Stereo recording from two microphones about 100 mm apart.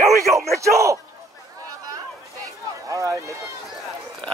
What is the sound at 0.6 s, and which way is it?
Bellow, 30° right (ahead or behind).